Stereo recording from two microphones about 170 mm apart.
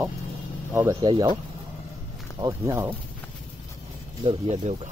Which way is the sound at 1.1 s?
30° right (ahead or behind).